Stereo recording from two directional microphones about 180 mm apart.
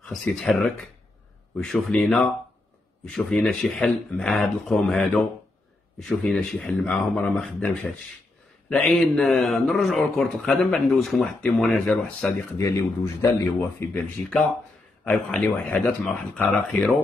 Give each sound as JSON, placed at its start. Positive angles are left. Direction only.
{"t": 0.1, "sound": "speech", "side_deg": 0}
{"t": 12.5, "sound": "speech", "side_deg": 15}
{"t": 15.0, "sound": "speech", "side_deg": 10}